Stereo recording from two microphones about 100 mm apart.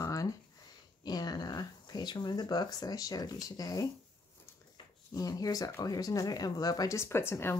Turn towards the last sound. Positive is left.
turn(degrees=25)  # may be behind; listen again after turning